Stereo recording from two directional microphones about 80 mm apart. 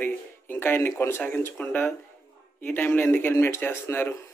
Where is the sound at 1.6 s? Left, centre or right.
Centre.